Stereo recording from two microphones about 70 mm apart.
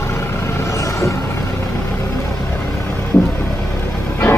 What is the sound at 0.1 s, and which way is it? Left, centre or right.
Vehicle, left.